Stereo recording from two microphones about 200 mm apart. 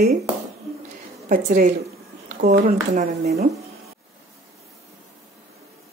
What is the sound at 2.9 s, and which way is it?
Speech, 35° right (ahead or behind).